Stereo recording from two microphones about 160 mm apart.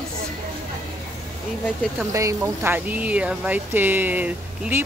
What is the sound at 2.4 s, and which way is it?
Speech, 10° right (ahead or behind).